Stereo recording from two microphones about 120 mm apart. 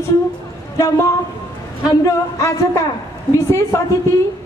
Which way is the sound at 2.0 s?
25° left (ahead or behind).